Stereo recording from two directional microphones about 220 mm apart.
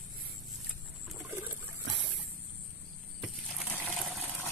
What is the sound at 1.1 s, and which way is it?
Trickle, 10° right (ahead or behind).